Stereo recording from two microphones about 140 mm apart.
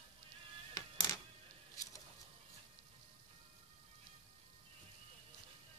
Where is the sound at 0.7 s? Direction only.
25° left (ahead or behind).